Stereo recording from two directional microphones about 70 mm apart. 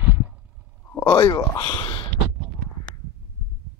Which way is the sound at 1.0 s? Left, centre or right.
Left.